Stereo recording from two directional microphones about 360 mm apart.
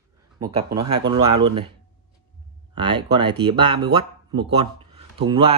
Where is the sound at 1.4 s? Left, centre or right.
Centre.